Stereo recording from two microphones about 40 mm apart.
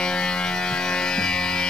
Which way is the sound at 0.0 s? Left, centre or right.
Left.